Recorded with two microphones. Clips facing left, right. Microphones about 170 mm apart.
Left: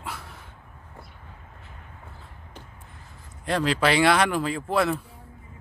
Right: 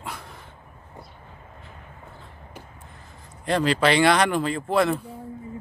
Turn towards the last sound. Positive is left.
turn(degrees=0)  # may be behind; listen again after turning